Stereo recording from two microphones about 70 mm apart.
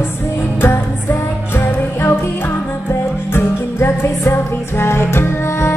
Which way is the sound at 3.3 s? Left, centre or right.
Left.